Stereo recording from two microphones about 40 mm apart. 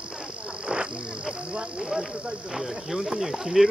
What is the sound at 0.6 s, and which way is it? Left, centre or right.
Frog, right.